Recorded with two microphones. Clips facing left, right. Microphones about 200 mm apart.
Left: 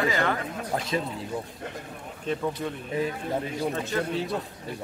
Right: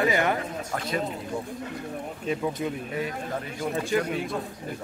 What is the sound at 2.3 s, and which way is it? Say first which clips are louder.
Speech: right 1 dB; 5° right (ahead or behind).